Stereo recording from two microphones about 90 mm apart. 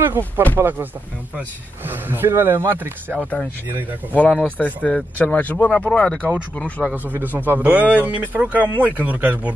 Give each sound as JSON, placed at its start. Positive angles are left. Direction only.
{"t": 0.0, "sound": "speech", "side_deg": -25}
{"t": 1.9, "sound": "speech", "side_deg": -20}
{"t": 3.2, "sound": "speech", "side_deg": 10}
{"t": 6.9, "sound": "speech", "side_deg": -20}